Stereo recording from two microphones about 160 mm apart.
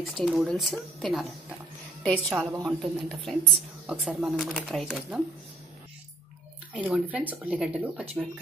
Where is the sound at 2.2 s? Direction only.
10° right (ahead or behind).